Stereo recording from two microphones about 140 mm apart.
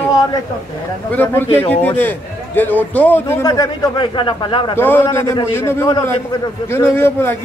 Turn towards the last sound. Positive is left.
turn(degrees=15)  # may be behind; listen again after turning